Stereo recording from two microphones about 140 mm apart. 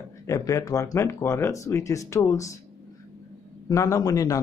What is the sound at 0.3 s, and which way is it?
Speech, 25° left (ahead or behind).